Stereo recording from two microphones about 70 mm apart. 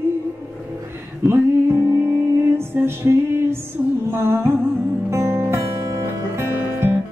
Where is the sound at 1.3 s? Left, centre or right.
Right.